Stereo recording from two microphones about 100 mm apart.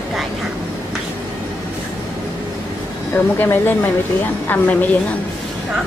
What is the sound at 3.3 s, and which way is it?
A woman's voice, 20° left (ahead or behind).